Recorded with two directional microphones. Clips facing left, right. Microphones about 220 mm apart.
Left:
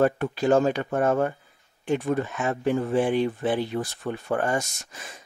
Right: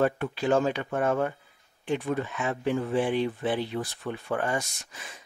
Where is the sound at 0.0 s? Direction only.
45° left (ahead or behind).